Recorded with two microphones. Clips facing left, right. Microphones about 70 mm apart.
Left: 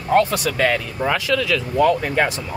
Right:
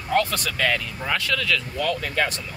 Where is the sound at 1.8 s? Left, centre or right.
Left.